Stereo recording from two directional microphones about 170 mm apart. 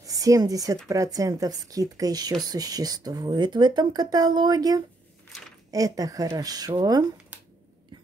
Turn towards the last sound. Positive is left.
turn(degrees=-25)  # may be behind; listen again after turning